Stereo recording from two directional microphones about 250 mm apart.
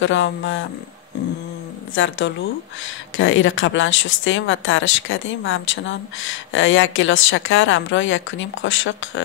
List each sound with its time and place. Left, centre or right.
0.0 s speech: left
2.0 s speech: left